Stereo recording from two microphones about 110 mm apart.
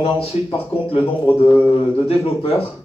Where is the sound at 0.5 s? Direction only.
55° left (ahead or behind).